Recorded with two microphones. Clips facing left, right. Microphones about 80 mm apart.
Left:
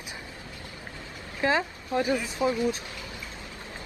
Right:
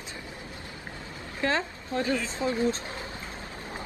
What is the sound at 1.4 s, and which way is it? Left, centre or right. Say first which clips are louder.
Speech: left 2 dB; centre.